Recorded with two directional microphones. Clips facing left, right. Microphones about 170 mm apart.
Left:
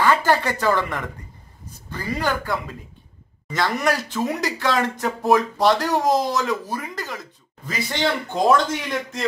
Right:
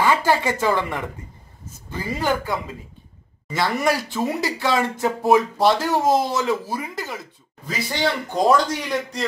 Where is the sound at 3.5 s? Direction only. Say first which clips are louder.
Right 1 dB; 5° right (ahead or behind).